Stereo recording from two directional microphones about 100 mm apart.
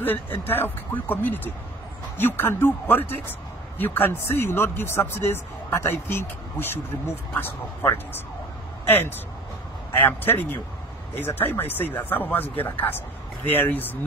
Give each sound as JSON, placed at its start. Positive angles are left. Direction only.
{"t": 0.0, "sound": "a man's voice", "side_deg": 20}